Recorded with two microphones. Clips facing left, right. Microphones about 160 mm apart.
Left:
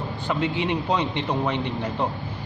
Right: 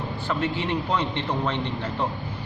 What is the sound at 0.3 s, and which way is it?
A man's voice, 15° left (ahead or behind).